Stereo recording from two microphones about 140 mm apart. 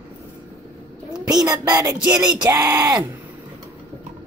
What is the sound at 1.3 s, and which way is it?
Speech, 25° right (ahead or behind).